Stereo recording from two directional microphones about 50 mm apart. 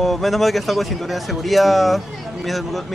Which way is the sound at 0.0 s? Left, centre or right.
Centre.